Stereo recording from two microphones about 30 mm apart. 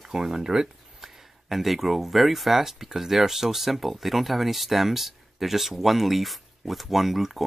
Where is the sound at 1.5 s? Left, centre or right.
Centre.